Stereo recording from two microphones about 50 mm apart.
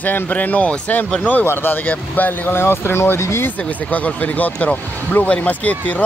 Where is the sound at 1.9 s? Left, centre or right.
Left.